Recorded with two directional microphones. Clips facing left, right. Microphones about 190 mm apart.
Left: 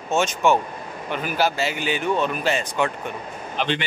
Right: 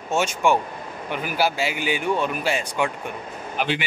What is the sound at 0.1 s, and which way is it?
Speech, 10° right (ahead or behind).